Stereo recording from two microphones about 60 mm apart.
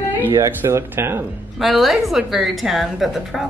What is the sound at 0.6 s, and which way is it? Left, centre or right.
Speech, right.